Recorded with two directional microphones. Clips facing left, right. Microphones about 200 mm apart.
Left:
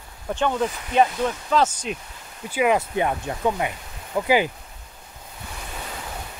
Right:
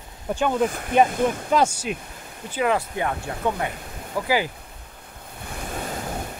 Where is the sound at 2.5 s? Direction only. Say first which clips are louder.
Left 2 dB; 15° left (ahead or behind).